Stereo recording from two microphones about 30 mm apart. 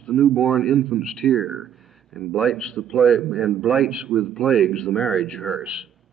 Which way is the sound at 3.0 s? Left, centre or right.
Centre.